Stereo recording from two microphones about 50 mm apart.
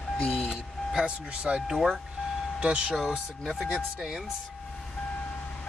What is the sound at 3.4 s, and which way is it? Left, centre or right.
Speech, centre.